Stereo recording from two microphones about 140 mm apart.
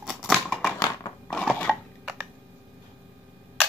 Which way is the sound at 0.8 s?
25° left (ahead or behind).